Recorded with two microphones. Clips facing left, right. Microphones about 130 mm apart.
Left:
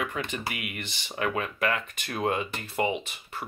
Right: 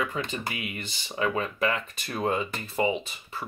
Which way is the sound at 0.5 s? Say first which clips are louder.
Right 1 dB; 65° left (ahead or behind).